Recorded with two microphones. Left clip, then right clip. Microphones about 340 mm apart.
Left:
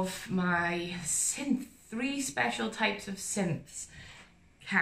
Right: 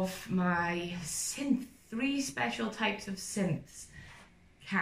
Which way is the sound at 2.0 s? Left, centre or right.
Centre.